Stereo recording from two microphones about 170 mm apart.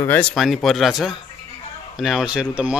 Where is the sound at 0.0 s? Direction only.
10° left (ahead or behind).